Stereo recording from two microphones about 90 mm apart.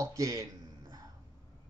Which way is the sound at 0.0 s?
40° right (ahead or behind).